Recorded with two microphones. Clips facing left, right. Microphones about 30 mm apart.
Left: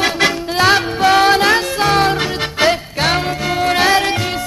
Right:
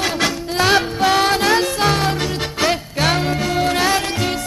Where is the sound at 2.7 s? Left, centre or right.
Left.